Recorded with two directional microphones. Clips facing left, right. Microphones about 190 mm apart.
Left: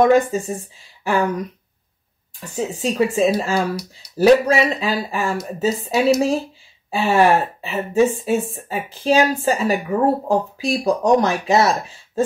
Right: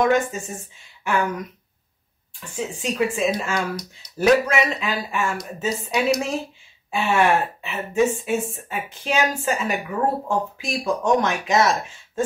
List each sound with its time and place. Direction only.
0.3 s speech: 35° left (ahead or behind)
2.4 s speech: 40° left (ahead or behind)